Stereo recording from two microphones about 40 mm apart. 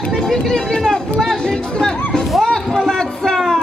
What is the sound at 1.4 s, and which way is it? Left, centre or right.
Chatter, centre.